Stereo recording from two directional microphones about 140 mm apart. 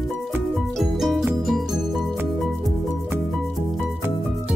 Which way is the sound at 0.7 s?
Centre (ahead or behind).